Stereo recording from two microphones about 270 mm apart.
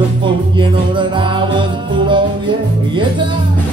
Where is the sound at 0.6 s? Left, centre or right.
Centre.